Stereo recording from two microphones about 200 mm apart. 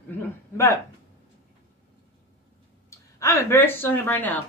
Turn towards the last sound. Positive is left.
turn(degrees=10)  # may be behind; listen again after turning